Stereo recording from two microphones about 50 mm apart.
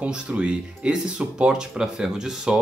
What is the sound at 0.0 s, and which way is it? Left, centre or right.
Speech, right.